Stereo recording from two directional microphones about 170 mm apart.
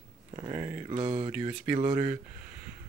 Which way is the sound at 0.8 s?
30° right (ahead or behind).